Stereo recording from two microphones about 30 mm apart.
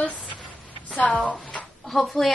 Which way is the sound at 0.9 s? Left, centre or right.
Left.